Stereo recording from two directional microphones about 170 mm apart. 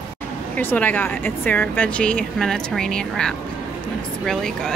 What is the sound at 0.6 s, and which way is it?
Speech, 10° left (ahead or behind).